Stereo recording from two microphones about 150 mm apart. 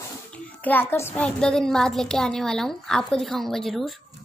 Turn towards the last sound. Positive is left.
turn(degrees=0)  # may be behind; listen again after turning